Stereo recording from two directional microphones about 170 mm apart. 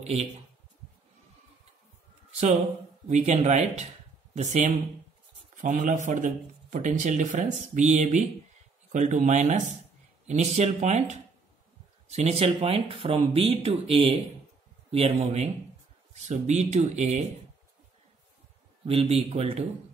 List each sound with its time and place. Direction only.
0.0 s speech: 40° right (ahead or behind)
3.1 s speech: 40° right (ahead or behind)
18.9 s speech: 35° right (ahead or behind)